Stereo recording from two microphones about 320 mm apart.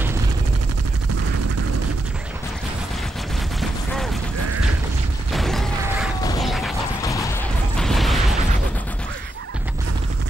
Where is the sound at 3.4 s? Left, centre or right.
Centre.